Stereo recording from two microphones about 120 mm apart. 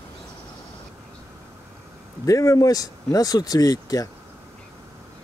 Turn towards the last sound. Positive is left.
turn(degrees=30)  # may be behind; listen again after turning